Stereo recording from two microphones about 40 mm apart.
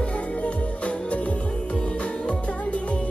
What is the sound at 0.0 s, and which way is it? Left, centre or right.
Music, left.